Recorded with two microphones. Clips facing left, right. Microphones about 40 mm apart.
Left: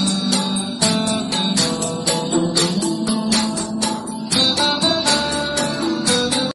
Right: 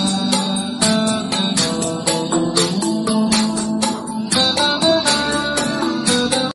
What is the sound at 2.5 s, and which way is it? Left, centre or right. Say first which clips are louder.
Music: right 1 dB; right.